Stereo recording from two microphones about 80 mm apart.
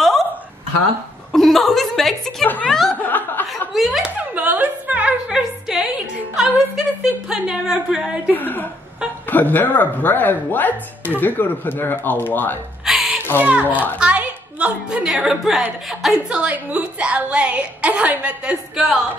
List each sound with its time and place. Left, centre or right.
1.3 s chuckle: centre
2.4 s speech: left
3.0 s chuckle: left
3.7 s a woman's voice: centre
4.0 s a sound: centre
5.4 s music: centre
6.3 s a woman's voice: centre
8.4 s speech: left
12.8 s a sound: centre
13.4 s a child's voice: centre
16.3 s a woman's voice: centre